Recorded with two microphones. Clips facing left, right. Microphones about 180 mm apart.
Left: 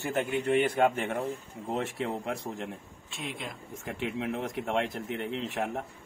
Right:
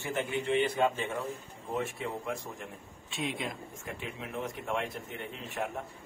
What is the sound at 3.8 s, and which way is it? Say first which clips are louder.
Speech: left 9 dB; 75° left (ahead or behind).